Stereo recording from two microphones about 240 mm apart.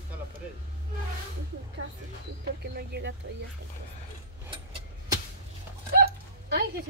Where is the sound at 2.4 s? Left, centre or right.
Right.